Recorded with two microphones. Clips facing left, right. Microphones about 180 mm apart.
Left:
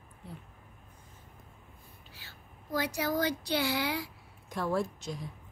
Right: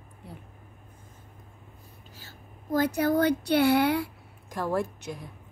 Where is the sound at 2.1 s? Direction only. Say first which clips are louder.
Right 4 dB; 45° right (ahead or behind).